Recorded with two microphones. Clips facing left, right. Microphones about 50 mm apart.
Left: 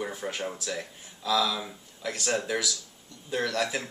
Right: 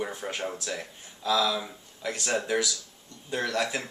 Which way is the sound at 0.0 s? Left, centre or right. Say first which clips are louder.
Even; centre.